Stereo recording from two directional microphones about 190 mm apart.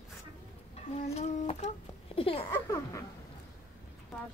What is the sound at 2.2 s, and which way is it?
Speech, 30° left (ahead or behind).